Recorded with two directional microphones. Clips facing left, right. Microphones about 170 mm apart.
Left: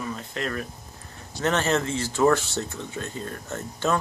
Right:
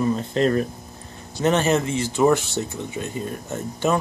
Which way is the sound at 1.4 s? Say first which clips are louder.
Right 4 dB; 15° right (ahead or behind).